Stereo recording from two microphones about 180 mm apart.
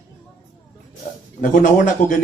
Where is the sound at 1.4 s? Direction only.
45° left (ahead or behind).